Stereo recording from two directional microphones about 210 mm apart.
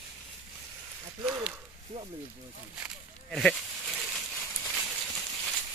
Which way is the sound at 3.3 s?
5° left (ahead or behind).